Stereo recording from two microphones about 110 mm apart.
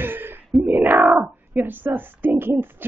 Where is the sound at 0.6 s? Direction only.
15° right (ahead or behind).